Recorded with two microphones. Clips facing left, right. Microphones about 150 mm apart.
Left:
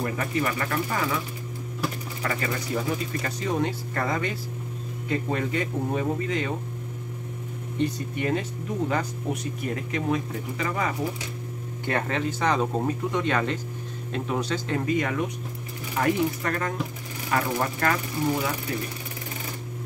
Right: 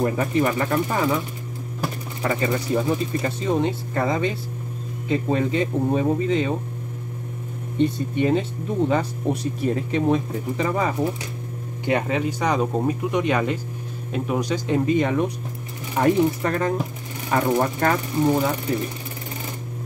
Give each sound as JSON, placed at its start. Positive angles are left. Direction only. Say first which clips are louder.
{"t": 0.0, "sound": "speech", "louder": "right 6 dB", "side_deg": -25}
{"t": 2.2, "sound": "speech", "louder": "right 6 dB", "side_deg": -25}
{"t": 7.8, "sound": "speech", "louder": "right 6 dB", "side_deg": -25}
{"t": 11.8, "sound": "speech", "louder": "right 5 dB", "side_deg": -15}
{"t": 14.9, "sound": "speech", "louder": "right 4 dB", "side_deg": -25}
{"t": 18.2, "sound": "speech", "louder": "right 7 dB", "side_deg": -35}